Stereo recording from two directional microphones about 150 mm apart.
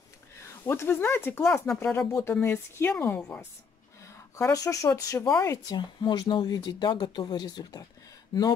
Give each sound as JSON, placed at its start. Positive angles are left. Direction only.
{"t": 0.4, "sound": "speech", "side_deg": 15}